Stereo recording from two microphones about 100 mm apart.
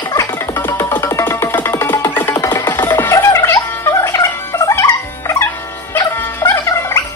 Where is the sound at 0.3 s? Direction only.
20° left (ahead or behind).